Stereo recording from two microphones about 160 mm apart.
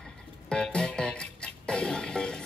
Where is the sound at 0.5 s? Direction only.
5° left (ahead or behind).